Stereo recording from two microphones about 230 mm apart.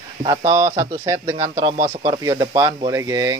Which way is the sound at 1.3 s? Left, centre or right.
Right.